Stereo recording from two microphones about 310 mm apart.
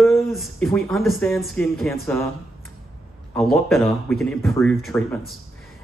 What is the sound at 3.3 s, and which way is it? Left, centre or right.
A man's voice, centre.